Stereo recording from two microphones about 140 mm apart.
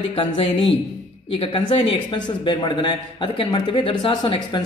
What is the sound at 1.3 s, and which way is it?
Speech, 35° left (ahead or behind).